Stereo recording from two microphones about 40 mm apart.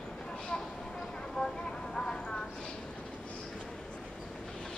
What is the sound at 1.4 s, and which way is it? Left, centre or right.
Vehicle, centre.